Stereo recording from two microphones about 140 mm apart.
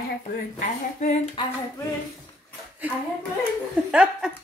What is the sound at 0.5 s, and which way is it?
Speech, 60° left (ahead or behind).